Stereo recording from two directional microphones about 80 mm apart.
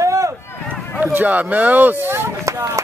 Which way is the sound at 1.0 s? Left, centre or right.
Right.